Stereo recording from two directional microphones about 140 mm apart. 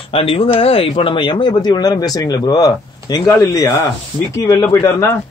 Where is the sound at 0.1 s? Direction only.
40° left (ahead or behind).